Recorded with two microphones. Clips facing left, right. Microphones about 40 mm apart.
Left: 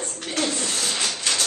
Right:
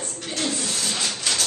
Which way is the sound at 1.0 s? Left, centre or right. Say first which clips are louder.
Even; centre.